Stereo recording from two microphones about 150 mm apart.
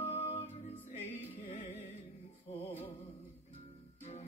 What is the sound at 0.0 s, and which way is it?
Music, 40° left (ahead or behind).